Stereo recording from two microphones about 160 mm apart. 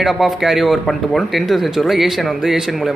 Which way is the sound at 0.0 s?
Centre (ahead or behind).